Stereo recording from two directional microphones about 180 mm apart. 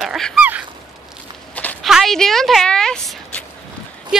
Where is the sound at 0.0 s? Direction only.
Centre (ahead or behind).